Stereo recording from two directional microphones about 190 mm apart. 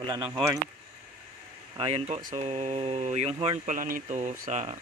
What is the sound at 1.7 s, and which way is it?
Speech, 30° right (ahead or behind).